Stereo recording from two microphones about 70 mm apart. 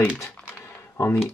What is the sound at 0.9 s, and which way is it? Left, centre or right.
Speech, left.